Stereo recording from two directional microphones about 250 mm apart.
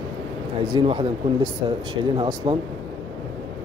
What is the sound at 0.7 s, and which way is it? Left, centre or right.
Speech, centre.